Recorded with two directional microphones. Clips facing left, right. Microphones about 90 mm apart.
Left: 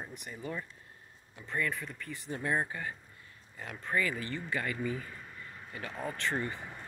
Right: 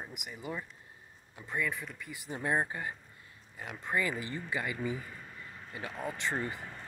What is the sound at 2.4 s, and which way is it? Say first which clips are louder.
Speech: right 1 dB; 20° right (ahead or behind).